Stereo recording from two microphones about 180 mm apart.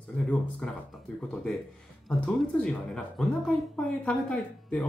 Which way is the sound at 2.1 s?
5° left (ahead or behind).